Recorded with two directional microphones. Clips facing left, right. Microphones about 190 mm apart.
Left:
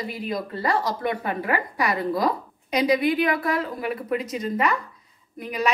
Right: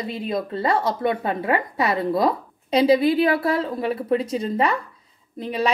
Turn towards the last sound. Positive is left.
turn(degrees=-30)  # may be behind; listen again after turning